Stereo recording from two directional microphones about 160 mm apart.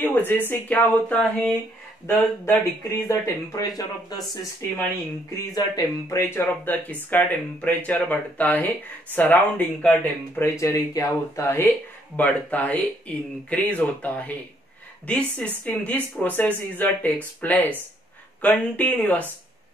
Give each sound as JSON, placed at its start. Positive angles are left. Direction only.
{"t": 0.0, "sound": "speech", "side_deg": 10}